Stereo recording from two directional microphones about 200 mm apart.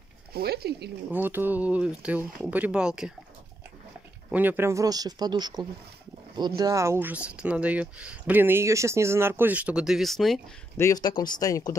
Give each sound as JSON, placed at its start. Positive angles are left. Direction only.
{"t": 0.3, "sound": "speech", "side_deg": -50}
{"t": 1.1, "sound": "speech", "side_deg": -10}
{"t": 4.3, "sound": "speech", "side_deg": -10}
{"t": 10.8, "sound": "speech", "side_deg": 20}